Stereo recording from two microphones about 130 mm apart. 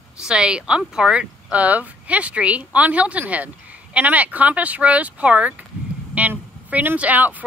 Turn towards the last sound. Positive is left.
turn(degrees=-10)  # may be behind; listen again after turning